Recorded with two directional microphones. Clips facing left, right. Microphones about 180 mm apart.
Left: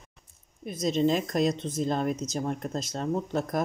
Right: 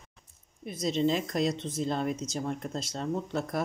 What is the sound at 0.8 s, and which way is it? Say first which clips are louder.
Speech: left 3 dB; 45° left (ahead or behind).